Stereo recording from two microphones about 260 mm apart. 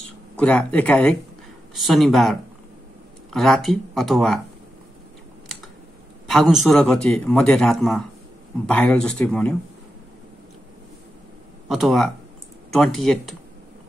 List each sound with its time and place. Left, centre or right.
0.4 s a man's voice: centre
6.2 s a man's voice: centre
11.7 s a man's voice: centre